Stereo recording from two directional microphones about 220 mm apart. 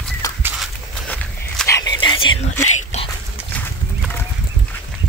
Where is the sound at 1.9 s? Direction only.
20° left (ahead or behind).